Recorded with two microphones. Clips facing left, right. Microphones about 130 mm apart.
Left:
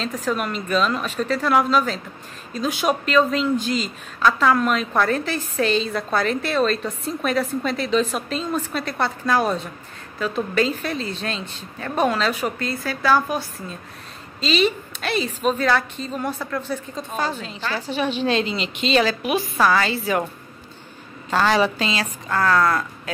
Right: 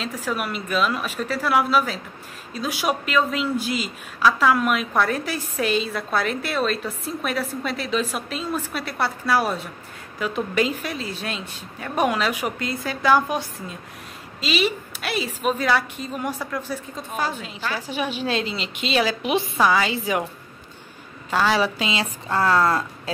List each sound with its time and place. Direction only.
0.0 s a woman's voice: 5° right (ahead or behind)
14.4 s a woman's voice: 10° right (ahead or behind)
19.2 s a woman's voice: 25° right (ahead or behind)
21.3 s a woman's voice: 5° right (ahead or behind)
22.3 s a woman's voice: 25° right (ahead or behind)